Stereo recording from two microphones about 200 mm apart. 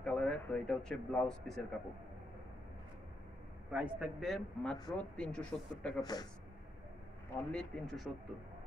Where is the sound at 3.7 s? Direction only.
5° right (ahead or behind).